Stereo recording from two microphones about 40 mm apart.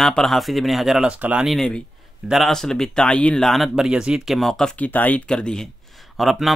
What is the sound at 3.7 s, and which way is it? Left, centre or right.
Speech, centre.